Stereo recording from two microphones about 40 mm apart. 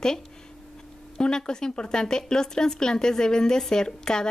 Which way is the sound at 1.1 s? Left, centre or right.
Centre.